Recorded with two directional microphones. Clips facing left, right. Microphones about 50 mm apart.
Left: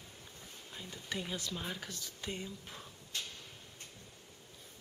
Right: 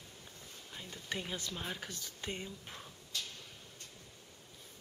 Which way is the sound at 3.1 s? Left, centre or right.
Left.